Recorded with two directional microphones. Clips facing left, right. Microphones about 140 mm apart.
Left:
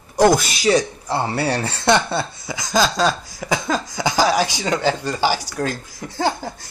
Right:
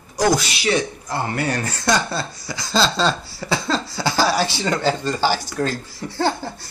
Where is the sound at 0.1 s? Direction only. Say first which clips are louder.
Left 4 dB; 50° left (ahead or behind).